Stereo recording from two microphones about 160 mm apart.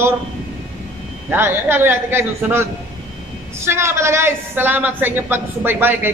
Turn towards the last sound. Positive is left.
turn(degrees=-15)  # may be behind; listen again after turning